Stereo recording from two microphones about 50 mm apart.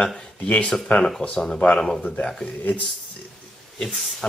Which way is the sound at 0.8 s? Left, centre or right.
Left.